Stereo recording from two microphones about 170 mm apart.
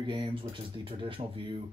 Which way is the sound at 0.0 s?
30° right (ahead or behind).